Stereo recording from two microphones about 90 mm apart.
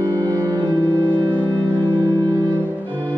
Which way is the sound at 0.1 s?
50° right (ahead or behind).